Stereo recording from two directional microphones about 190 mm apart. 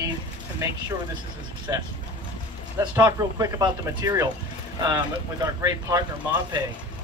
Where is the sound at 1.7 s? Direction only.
20° right (ahead or behind).